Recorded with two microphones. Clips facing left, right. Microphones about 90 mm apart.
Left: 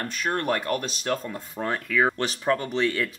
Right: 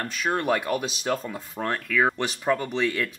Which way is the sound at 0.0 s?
5° right (ahead or behind).